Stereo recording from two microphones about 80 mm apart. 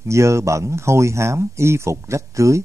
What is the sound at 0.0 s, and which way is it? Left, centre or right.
A man's voice, right.